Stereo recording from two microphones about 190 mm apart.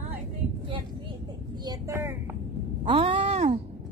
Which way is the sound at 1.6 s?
20° right (ahead or behind).